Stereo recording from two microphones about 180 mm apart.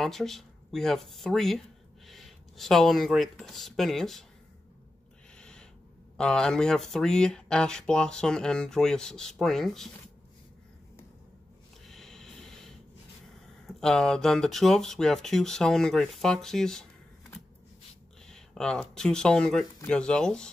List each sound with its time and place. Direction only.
0.0 s speech: centre (ahead or behind)
5.4 s owl: 5° left (ahead or behind)
6.1 s speech: 5° left (ahead or behind)
11.9 s a sound: centre (ahead or behind)
13.7 s speech: centre (ahead or behind)
18.2 s speech: 5° left (ahead or behind)